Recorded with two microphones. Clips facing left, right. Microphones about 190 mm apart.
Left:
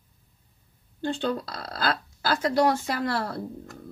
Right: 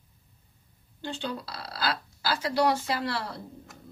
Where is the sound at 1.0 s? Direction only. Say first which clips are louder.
Left 7 dB; 50° left (ahead or behind).